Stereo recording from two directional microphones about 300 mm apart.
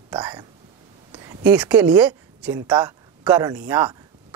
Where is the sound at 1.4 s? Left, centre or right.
Centre.